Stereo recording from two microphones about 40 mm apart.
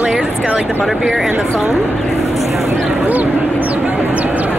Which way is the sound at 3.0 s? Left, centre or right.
Right.